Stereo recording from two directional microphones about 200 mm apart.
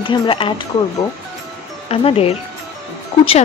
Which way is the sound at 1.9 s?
30° left (ahead or behind).